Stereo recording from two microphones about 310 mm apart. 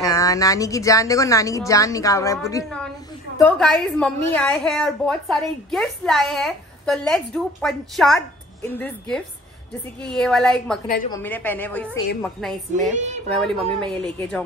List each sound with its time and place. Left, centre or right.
0.0 s a woman's voice: centre
12.9 s a woman's voice: right
13.3 s a woman's voice: centre